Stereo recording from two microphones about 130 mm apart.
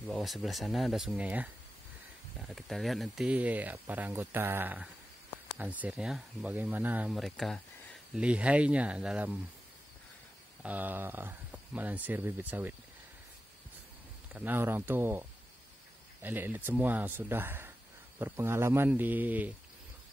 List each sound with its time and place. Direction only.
0.1 s speech: centre (ahead or behind)
7.1 s speech: centre (ahead or behind)
8.1 s speech: 10° right (ahead or behind)
10.6 s speech: 15° right (ahead or behind)
14.3 s speech: 15° right (ahead or behind)